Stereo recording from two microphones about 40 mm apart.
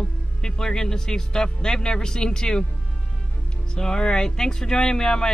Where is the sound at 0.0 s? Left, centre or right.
Centre.